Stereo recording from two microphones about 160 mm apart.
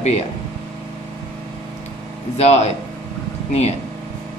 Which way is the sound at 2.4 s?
45° left (ahead or behind).